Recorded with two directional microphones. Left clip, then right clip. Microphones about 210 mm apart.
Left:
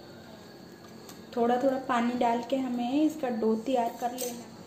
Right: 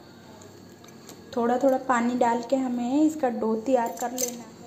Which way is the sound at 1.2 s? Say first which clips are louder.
Right 3 dB; 30° right (ahead or behind).